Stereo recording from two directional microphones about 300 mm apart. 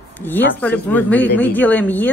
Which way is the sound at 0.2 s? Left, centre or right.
Centre.